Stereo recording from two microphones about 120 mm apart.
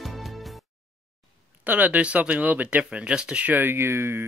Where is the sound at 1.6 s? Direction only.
15° right (ahead or behind).